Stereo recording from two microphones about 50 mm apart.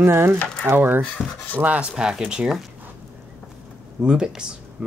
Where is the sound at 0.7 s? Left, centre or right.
Right.